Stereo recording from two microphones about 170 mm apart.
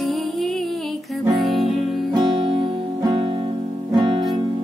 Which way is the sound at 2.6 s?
25° right (ahead or behind).